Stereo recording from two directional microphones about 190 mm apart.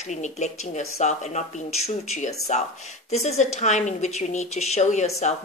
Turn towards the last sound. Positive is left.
turn(degrees=35)  # may be behind; listen again after turning